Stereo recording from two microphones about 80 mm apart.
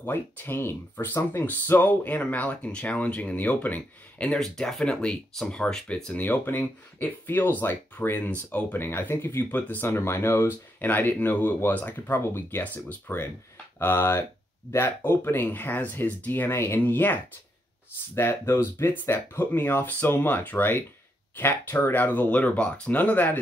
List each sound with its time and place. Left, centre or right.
0.0 s speech: left
4.3 s speech: centre
8.7 s speech: left